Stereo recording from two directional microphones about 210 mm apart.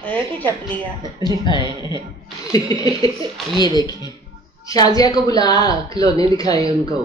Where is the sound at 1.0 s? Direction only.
20° right (ahead or behind).